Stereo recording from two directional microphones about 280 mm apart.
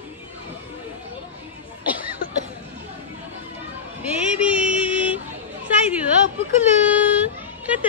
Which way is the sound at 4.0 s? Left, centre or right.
Centre.